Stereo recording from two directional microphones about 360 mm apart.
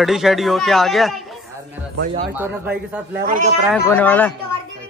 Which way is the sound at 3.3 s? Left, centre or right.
Right.